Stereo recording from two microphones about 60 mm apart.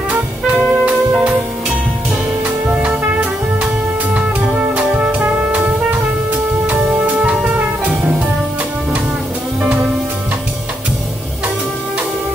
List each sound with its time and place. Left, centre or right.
0.1 s music: right
3.6 s music: centre
4.6 s jazz: right